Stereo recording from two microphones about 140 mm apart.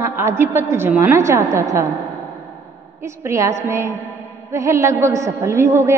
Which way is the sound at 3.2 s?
20° right (ahead or behind).